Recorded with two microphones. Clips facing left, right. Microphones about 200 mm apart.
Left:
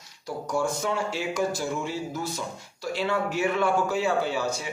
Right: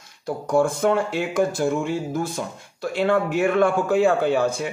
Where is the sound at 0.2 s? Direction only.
55° right (ahead or behind).